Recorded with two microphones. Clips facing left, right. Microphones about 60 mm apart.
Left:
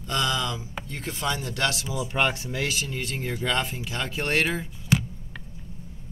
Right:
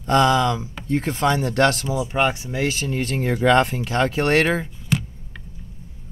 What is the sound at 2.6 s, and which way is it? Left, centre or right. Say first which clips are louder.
Speech: right 8 dB; right.